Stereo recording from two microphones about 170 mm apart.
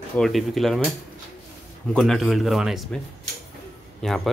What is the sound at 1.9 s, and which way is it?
Speech, centre (ahead or behind).